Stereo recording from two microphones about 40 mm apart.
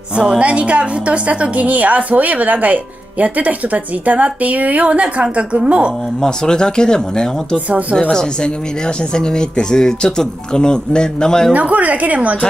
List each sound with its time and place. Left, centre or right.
0.1 s a woman's voice: right
0.4 s a woman's voice: right
6.2 s speech: centre
11.5 s a woman's voice: right